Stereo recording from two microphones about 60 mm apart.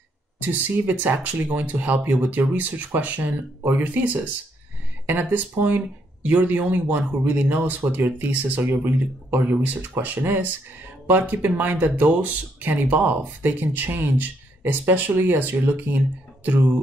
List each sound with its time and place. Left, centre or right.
0.4 s speech: right